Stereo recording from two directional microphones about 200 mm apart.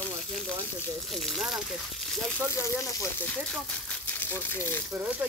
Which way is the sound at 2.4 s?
15° left (ahead or behind).